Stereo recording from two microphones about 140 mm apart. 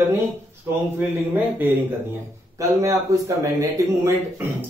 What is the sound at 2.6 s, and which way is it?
Speech, 20° right (ahead or behind).